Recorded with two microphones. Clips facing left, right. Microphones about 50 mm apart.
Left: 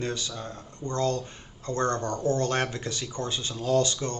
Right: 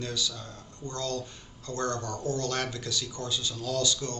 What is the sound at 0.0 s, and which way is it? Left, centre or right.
Speech, left.